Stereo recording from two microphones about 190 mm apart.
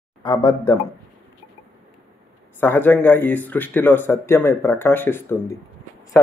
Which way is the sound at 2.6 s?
10° left (ahead or behind).